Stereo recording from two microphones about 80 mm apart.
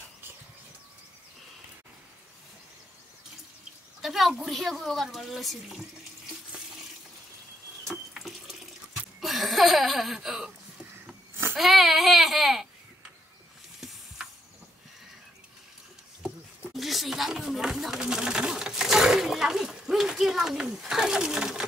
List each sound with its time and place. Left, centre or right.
4.0 s speech: centre
7.9 s water tap: centre
9.2 s a sound: centre
11.5 s baby cry: centre
13.7 s spray: centre
16.7 s a sound: centre